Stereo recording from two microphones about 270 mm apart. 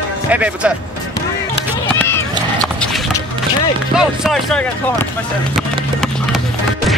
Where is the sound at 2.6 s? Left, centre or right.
Centre.